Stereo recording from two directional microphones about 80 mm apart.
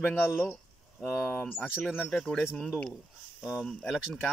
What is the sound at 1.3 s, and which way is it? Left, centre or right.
Speech, left.